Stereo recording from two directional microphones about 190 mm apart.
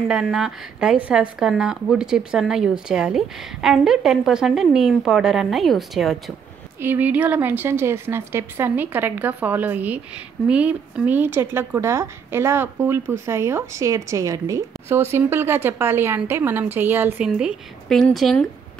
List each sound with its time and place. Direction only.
0.1 s a woman's voice: centre (ahead or behind)
17.3 s speech: centre (ahead or behind)